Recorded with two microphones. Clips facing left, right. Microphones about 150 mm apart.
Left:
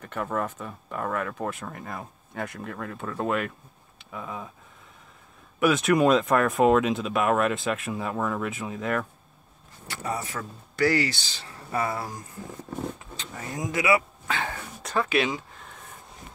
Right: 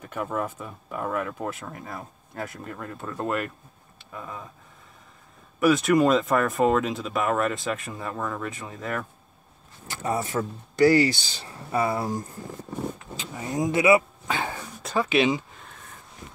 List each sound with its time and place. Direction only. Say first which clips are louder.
0.0 s speech: even; 5° right (ahead or behind)
5.6 s speech: right 1 dB; centre (ahead or behind)
9.8 s speech: right 4 dB; 25° right (ahead or behind)
13.1 s vehicle: right 4 dB; 10° right (ahead or behind)
13.6 s a man's voice: right 5 dB; 25° right (ahead or behind)
14.3 s dog: right 1 dB; 10° right (ahead or behind)
15.0 s speech: right 6 dB; 20° right (ahead or behind)